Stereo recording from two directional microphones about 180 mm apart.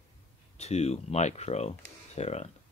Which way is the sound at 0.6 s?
35° left (ahead or behind).